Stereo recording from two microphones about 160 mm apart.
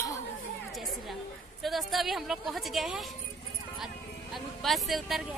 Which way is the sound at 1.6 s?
Centre (ahead or behind).